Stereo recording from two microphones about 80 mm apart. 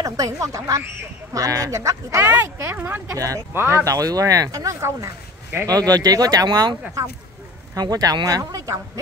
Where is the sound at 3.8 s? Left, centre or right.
Right.